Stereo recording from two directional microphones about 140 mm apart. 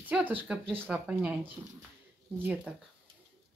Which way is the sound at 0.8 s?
10° right (ahead or behind).